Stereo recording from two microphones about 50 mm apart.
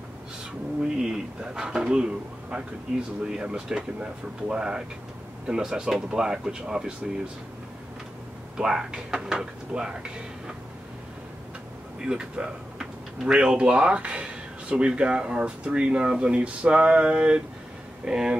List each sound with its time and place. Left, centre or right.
0.8 s speech: centre
8.5 s speech: centre
12.0 s speech: centre